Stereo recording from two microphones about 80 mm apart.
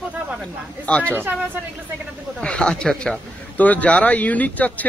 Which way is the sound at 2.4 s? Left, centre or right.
Centre.